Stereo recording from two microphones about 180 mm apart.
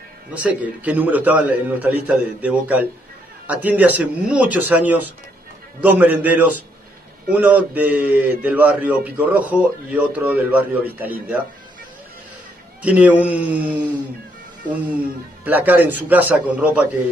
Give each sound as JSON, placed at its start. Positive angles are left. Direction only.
{"t": 0.3, "sound": "speech", "side_deg": -10}
{"t": 12.8, "sound": "speech", "side_deg": -10}
{"t": 15.4, "sound": "speech", "side_deg": -10}